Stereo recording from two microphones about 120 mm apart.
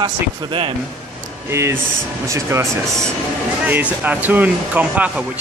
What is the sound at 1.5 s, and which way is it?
Speech, 25° right (ahead or behind).